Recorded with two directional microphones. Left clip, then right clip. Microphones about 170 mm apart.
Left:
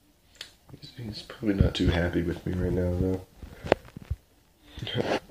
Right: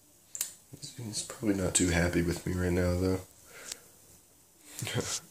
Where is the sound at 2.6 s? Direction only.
25° right (ahead or behind).